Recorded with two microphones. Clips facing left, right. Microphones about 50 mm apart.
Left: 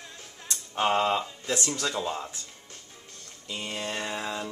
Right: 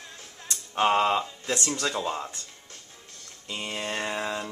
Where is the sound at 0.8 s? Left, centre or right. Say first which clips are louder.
Right 2 dB; centre.